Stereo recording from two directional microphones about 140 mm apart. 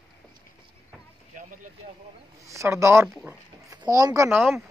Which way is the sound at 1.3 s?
70° right (ahead or behind).